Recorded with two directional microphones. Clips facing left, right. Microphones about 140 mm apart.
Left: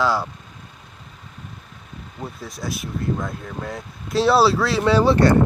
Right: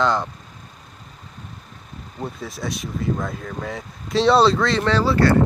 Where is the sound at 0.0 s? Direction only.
5° left (ahead or behind).